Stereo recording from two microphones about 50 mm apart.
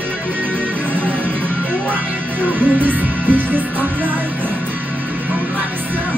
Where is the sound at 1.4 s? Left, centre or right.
Right.